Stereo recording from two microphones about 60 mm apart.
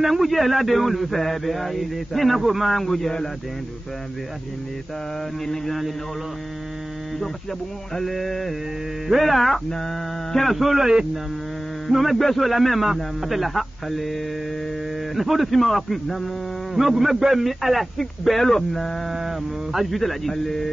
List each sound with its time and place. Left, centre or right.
0.0 s speech: centre
5.5 s speech: centre
7.9 s speech: centre
11.9 s speech: centre